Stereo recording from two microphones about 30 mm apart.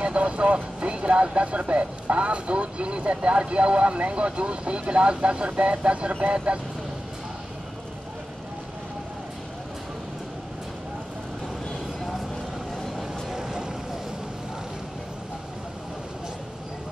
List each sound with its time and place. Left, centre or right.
0.2 s speech: right
13.3 s boat: centre